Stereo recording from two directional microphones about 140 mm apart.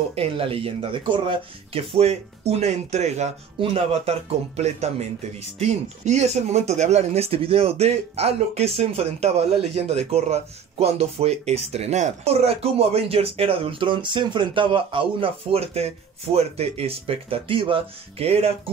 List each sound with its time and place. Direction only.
0.1 s speech: 45° right (ahead or behind)